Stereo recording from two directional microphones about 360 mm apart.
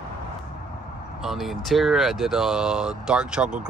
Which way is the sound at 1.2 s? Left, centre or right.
Centre.